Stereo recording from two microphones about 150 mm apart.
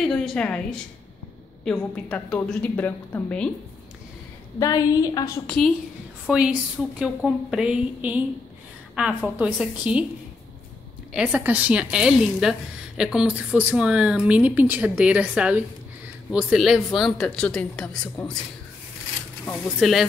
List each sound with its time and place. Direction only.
0.0 s a woman's voice: 5° left (ahead or behind)
4.6 s a woman's voice: 25° left (ahead or behind)
6.3 s a woman's voice: 5° right (ahead or behind)
11.1 s a woman's voice: 10° right (ahead or behind); by 18.1 s 5° left (ahead or behind)
19.8 s a woman's voice: centre (ahead or behind)